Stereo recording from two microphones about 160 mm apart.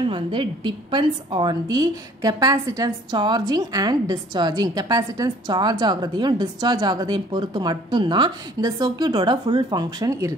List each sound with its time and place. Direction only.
0.0 s a woman's voice: 30° right (ahead or behind)